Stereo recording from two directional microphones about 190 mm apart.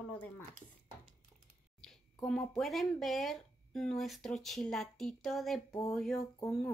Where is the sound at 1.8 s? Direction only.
5° left (ahead or behind).